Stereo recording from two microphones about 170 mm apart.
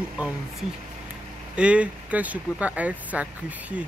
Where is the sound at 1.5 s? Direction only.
5° right (ahead or behind).